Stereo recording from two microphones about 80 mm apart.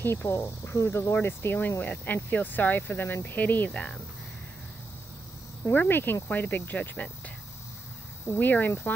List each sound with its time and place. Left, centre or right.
0.0 s speech: left; by 4.0 s centre
5.6 s speech: left
8.3 s speech: left